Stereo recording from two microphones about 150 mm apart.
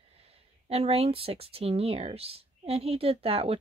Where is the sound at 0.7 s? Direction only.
40° right (ahead or behind).